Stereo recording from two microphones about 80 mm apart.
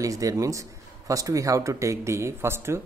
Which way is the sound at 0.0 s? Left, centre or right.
Right.